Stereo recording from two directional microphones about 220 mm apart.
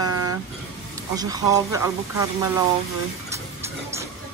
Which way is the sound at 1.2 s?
15° right (ahead or behind).